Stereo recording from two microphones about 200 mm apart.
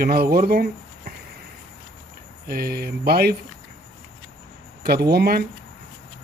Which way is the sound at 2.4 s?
50° right (ahead or behind).